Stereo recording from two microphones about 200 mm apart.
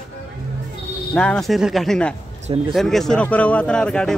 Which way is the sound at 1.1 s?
5° left (ahead or behind).